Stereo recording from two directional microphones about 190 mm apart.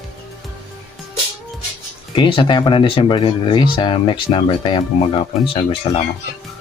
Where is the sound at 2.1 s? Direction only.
25° left (ahead or behind).